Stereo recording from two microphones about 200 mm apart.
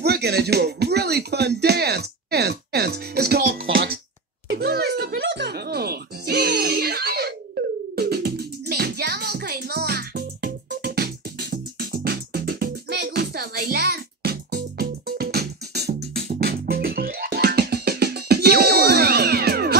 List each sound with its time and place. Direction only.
0.0 s speech: 55° right (ahead or behind)
3.6 s music: 70° right (ahead or behind)
4.5 s a sound: 50° right (ahead or behind)
5.1 s music: 65° right (ahead or behind)